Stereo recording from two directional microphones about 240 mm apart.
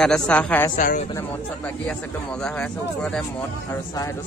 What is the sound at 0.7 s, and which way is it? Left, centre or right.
Speech, left.